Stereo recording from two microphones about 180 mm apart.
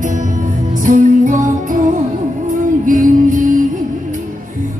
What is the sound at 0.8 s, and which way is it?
Music, 45° right (ahead or behind).